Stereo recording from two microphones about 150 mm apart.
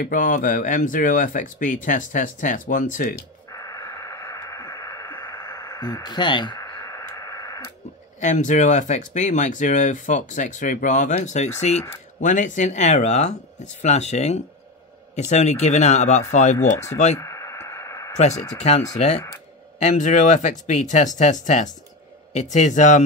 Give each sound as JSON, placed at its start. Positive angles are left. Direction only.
{"t": 0.0, "sound": "speech", "side_deg": 65}
{"t": 3.4, "sound": "radio", "side_deg": 20}
{"t": 8.2, "sound": "speech", "side_deg": 55}
{"t": 17.2, "sound": "a sound", "side_deg": 20}
{"t": 18.6, "sound": "speech", "side_deg": 50}